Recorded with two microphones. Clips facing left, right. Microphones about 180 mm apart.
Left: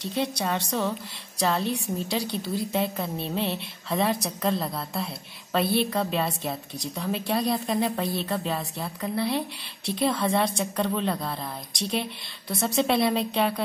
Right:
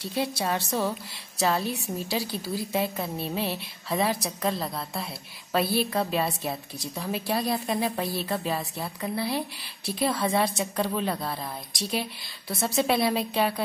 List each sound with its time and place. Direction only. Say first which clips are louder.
0.0 s a woman's voice: left 1 dB; 5° right (ahead or behind)